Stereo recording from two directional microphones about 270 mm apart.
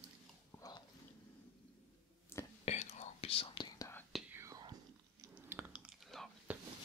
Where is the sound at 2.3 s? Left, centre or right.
Centre.